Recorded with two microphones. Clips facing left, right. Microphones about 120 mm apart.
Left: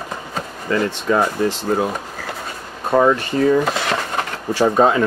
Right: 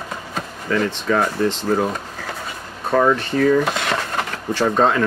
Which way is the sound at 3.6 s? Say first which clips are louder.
Left 1 dB; centre (ahead or behind).